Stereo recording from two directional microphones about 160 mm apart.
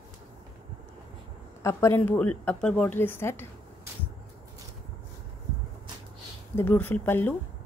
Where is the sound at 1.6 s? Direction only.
20° left (ahead or behind).